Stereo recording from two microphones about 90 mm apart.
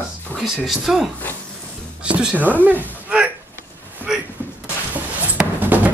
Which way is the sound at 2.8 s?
15° right (ahead or behind).